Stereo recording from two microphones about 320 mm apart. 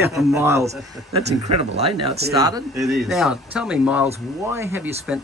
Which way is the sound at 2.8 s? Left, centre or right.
Centre.